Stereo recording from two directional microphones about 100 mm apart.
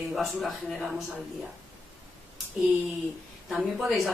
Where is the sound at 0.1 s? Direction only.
Centre (ahead or behind).